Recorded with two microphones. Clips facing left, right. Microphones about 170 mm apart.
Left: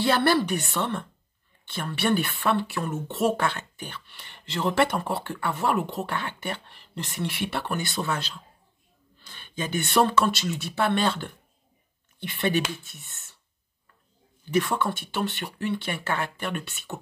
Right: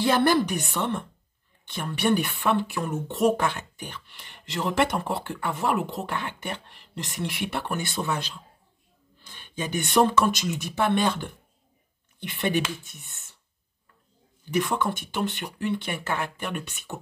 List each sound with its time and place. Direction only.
0.0 s speech: 15° right (ahead or behind)
14.5 s speech: 15° right (ahead or behind)